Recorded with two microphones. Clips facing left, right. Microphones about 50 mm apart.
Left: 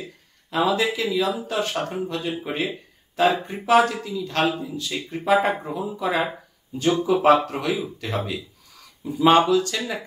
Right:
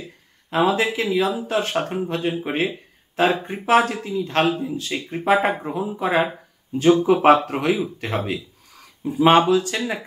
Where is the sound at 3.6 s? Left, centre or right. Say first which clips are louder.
Even; right.